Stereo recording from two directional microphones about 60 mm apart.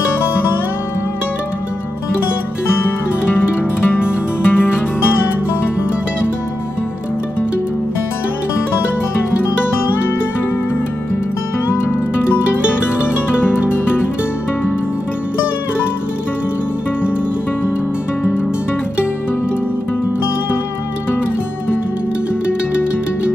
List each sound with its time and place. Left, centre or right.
3.9 s music: left
13.0 s music: left